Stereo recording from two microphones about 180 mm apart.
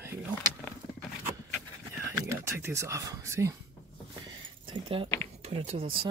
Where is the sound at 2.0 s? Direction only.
15° right (ahead or behind).